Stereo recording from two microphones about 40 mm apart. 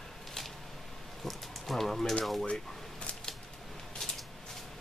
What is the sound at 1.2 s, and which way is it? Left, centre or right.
Rain on surface, centre.